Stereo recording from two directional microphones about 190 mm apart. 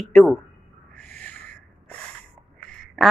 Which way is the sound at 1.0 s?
5° left (ahead or behind).